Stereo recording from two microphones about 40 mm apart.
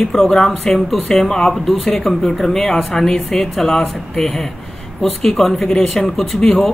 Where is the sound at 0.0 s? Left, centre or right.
Centre.